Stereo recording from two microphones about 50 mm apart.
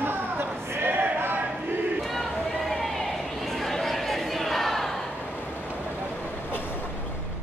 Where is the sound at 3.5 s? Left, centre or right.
Centre.